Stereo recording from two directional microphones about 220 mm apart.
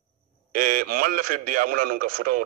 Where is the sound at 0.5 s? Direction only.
40° right (ahead or behind).